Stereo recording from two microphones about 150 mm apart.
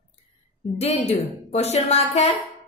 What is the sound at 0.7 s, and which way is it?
A woman's voice, 45° left (ahead or behind).